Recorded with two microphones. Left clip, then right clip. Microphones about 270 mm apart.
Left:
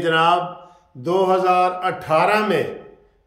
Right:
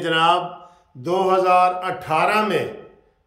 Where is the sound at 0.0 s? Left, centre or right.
Centre.